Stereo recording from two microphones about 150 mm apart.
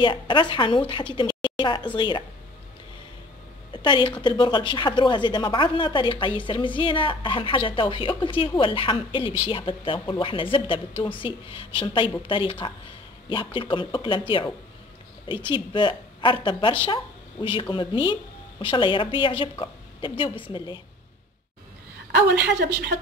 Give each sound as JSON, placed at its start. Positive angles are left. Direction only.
{"t": 0.0, "sound": "a woman's voice", "side_deg": 30}
{"t": 3.7, "sound": "a woman's voice", "side_deg": 30}
{"t": 15.5, "sound": "a woman's voice", "side_deg": 30}
{"t": 22.1, "sound": "a woman's voice", "side_deg": -90}